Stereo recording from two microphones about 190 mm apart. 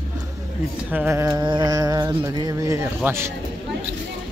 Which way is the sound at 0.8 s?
10° right (ahead or behind).